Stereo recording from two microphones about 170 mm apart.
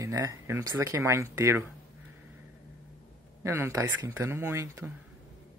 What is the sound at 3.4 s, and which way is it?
Speech, 15° right (ahead or behind).